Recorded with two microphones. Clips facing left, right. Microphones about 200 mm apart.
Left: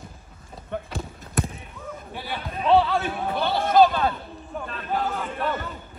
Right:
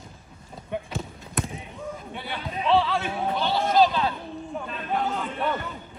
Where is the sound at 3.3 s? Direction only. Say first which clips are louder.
Left 3 dB; 55° left (ahead or behind).